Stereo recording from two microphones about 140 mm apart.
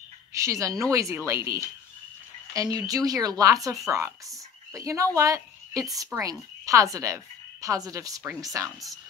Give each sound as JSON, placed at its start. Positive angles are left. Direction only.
{"t": 0.3, "sound": "a woman's voice", "side_deg": -20}